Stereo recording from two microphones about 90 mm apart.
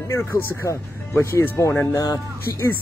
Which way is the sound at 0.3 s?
20° left (ahead or behind).